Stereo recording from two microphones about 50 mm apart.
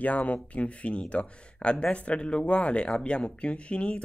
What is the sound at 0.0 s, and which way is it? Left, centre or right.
Speech, left.